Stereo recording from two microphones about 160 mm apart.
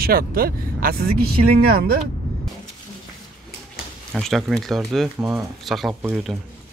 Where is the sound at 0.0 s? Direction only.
70° right (ahead or behind).